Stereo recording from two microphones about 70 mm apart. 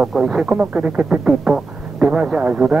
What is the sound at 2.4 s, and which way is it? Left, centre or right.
Speech, right.